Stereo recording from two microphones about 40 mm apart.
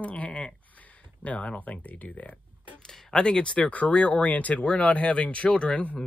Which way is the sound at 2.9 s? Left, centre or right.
Centre.